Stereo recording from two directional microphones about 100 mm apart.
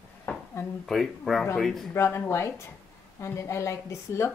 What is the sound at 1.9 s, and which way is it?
Speech, 25° left (ahead or behind).